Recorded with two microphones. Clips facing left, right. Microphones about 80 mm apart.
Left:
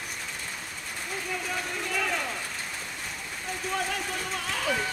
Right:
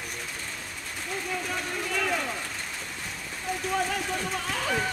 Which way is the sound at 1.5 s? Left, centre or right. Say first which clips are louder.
Left 1 dB; centre.